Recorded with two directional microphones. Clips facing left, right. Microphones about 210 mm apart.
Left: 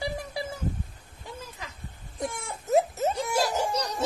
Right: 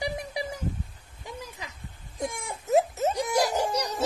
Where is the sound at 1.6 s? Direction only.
15° right (ahead or behind).